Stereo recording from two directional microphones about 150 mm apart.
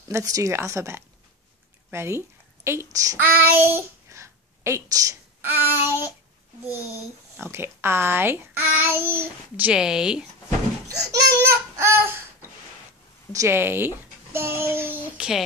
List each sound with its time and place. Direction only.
0.1 s a child's voice: 20° right (ahead or behind)
7.3 s a child's voice: 15° right (ahead or behind)
11.1 s a sound: 15° right (ahead or behind)
13.3 s a child's voice: 20° right (ahead or behind)